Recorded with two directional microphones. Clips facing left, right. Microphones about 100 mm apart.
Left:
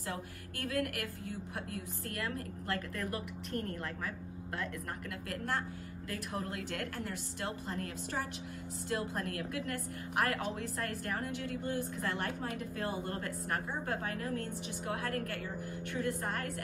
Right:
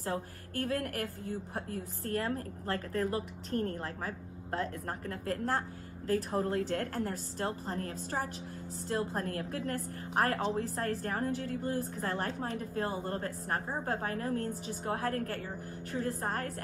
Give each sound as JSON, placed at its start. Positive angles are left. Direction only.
{"t": 0.0, "sound": "a woman's voice", "side_deg": -35}